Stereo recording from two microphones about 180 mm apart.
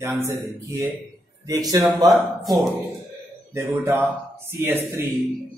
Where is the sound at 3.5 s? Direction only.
15° right (ahead or behind).